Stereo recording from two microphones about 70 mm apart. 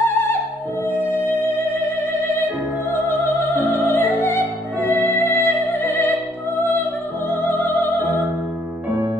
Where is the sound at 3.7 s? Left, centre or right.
Left.